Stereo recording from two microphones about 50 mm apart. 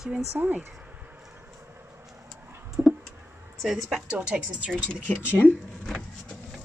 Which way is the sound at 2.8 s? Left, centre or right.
Right.